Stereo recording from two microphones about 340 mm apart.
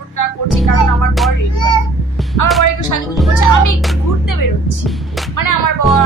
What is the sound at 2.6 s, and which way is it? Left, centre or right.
A child's voice, left.